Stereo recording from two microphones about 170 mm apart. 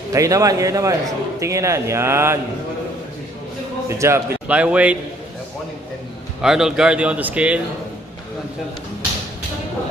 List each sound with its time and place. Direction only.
0.1 s a man's voice: 20° right (ahead or behind)
4.0 s a man's voice: 10° right (ahead or behind)
6.4 s a man's voice: 5° right (ahead or behind)